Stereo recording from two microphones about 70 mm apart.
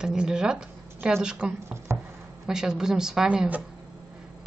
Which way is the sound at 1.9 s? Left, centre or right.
Right.